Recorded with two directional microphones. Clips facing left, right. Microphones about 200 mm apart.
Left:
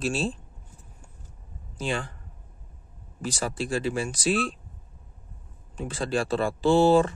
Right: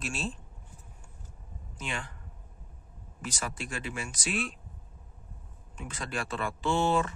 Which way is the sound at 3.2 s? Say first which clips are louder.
Left 8 dB; 30° left (ahead or behind).